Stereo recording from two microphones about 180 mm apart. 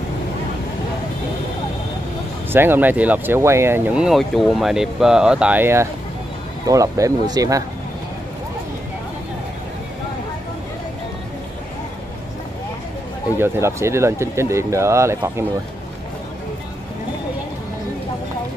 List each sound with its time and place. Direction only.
2.5 s speech: 10° right (ahead or behind)
13.4 s speech: 15° right (ahead or behind)